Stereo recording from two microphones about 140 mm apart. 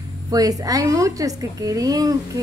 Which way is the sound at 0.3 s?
25° right (ahead or behind).